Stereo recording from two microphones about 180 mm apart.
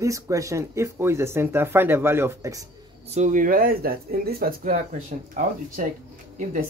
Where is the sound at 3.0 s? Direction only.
40° right (ahead or behind).